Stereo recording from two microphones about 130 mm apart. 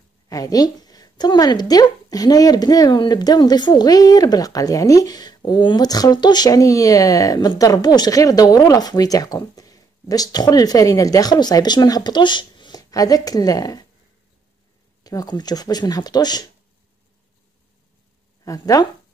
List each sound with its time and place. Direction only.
0.3 s speech: 30° left (ahead or behind)
15.0 s speech: 30° left (ahead or behind)
18.4 s speech: 25° left (ahead or behind)